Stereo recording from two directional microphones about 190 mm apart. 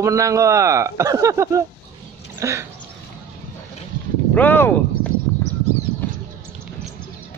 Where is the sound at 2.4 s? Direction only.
15° right (ahead or behind).